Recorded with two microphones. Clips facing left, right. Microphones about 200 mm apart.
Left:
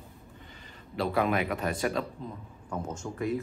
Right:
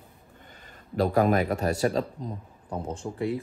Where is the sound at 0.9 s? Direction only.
45° right (ahead or behind).